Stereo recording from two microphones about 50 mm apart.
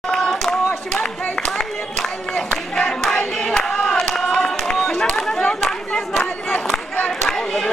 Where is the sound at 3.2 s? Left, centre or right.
Left.